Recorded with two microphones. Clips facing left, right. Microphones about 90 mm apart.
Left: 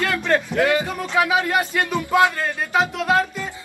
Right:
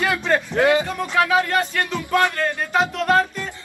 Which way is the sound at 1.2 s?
15° left (ahead or behind).